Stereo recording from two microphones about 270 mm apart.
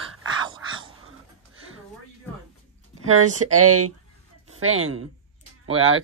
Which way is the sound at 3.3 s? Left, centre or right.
Right.